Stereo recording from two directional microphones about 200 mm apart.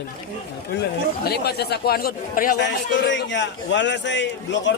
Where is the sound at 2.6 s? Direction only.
65° left (ahead or behind).